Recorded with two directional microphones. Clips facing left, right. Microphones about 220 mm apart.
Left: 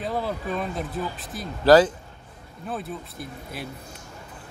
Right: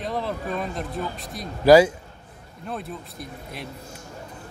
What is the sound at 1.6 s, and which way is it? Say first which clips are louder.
Speech: right 2 dB; 10° right (ahead or behind).